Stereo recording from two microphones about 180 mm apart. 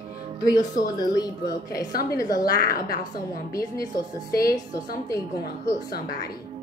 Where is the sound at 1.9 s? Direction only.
55° left (ahead or behind).